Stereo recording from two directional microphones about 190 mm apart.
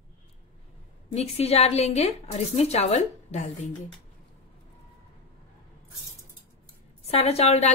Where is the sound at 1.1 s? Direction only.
35° left (ahead or behind).